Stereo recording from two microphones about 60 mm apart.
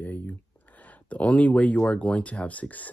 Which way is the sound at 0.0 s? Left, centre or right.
Left.